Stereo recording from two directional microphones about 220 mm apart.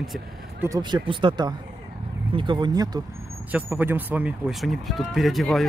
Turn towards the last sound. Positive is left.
turn(degrees=0)  # may be behind; listen again after turning